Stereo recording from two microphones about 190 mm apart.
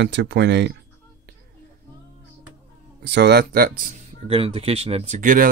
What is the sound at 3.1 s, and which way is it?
Speech, 60° right (ahead or behind).